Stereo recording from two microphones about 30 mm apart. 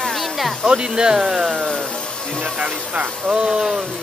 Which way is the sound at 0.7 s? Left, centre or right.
Right.